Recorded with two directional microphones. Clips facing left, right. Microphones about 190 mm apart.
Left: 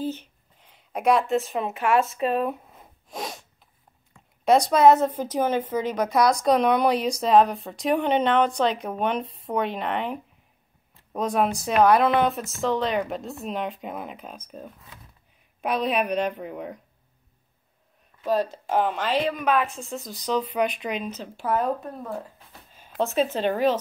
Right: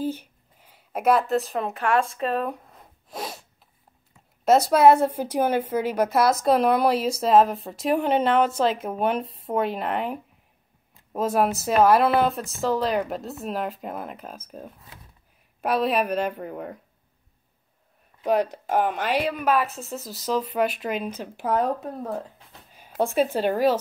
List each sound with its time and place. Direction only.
0.0 s a sound: 10° right (ahead or behind)
4.5 s a woman's voice: 5° right (ahead or behind)
18.2 s a woman's voice: 20° right (ahead or behind)
22.7 s a woman's voice: 10° right (ahead or behind)